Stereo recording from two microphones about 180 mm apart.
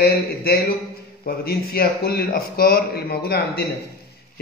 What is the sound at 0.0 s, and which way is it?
A man's voice, 60° left (ahead or behind).